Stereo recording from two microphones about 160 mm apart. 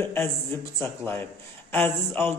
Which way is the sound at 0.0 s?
15° left (ahead or behind).